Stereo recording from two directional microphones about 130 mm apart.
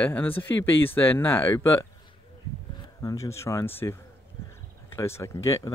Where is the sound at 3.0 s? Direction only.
25° left (ahead or behind).